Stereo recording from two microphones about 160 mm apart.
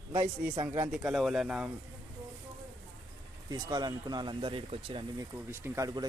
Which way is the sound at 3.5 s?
25° right (ahead or behind).